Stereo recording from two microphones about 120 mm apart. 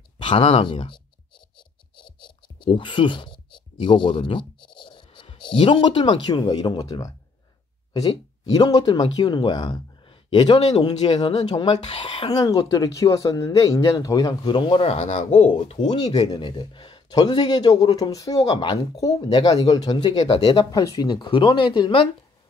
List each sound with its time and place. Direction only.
0.2 s speech: 50° left (ahead or behind)
2.6 s speech: 45° left (ahead or behind)
12.0 s a sound: 45° left (ahead or behind)
12.3 s speech: 30° left (ahead or behind); by 15.5 s 85° left
16.1 s speech: 35° left (ahead or behind)